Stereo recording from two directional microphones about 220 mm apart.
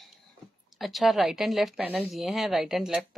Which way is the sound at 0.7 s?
Centre (ahead or behind).